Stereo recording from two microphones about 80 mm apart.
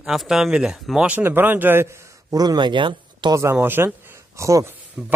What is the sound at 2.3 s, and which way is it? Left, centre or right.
Speech, right.